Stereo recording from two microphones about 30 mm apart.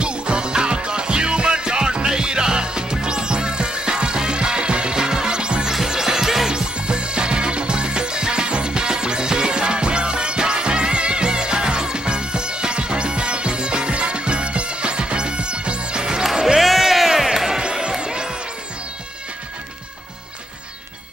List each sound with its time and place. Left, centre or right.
0.0 s music: right
5.7 s music: centre
6.5 s music: right
16.5 s music: centre; by 18.3 s right